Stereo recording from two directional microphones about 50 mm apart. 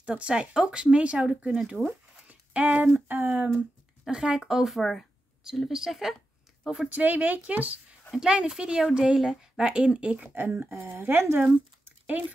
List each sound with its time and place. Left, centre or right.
0.0 s speech: right
2.2 s a sound: right
2.9 s child singing: right
3.5 s speech: centre
5.4 s speech: centre
6.9 s speech: right
8.1 s speech: centre
10.3 s speech: right
10.7 s speech: right
11.0 s child singing: right